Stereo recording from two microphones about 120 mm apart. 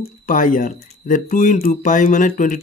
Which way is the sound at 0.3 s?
90° left.